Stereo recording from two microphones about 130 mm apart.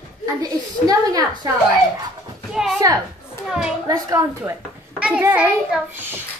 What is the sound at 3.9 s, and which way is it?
Speech, 25° right (ahead or behind).